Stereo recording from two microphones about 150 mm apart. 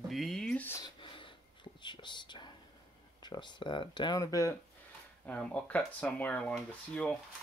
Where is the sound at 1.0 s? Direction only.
30° left (ahead or behind).